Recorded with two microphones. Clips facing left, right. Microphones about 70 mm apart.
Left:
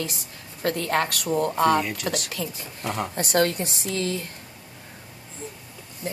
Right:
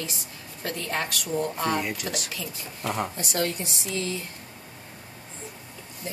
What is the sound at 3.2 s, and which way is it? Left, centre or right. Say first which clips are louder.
A woman's voice: left 6 dB; left.